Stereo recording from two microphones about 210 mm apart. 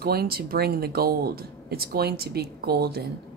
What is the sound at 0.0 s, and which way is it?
Speech, 45° right (ahead or behind).